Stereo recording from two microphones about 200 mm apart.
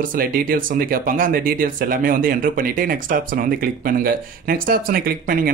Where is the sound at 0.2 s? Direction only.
45° right (ahead or behind).